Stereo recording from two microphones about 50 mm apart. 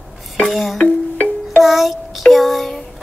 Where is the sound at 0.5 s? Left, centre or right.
Centre.